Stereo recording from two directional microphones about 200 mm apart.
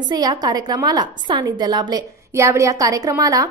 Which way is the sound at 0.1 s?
20° right (ahead or behind).